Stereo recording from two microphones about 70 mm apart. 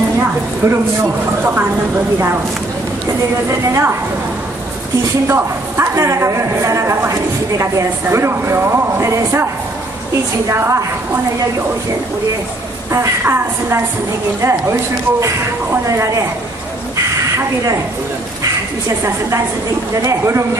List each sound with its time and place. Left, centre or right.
1.4 s speech: right
3.4 s a woman's voice: right
5.3 s a woman's voice: right
10.5 s a woman's voice: right
13.2 s a woman's voice: right
16.9 s a sound: right
18.4 s a woman's voice: right